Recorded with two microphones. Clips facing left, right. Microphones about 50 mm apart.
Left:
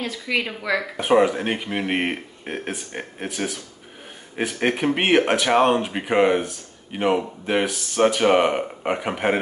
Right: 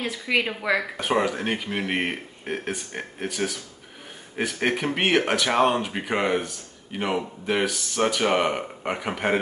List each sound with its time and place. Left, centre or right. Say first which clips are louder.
0.0 s a woman's voice: even; centre
0.9 s speech: left 6 dB; left
4.6 s speech: left 4 dB; centre